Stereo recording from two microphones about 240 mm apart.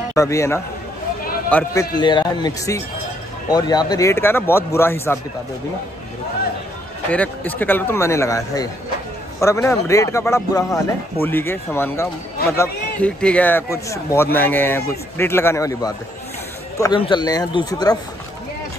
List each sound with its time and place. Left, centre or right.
0.1 s a man's voice: centre
7.1 s a man's voice: centre